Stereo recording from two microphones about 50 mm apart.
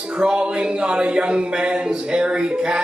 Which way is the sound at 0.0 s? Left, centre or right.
Centre.